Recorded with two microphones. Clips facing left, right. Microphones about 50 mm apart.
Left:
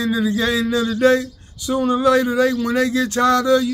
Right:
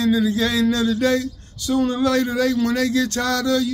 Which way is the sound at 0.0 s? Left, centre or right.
Centre.